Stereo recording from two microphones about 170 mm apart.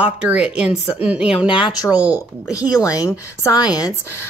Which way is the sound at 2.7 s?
20° left (ahead or behind).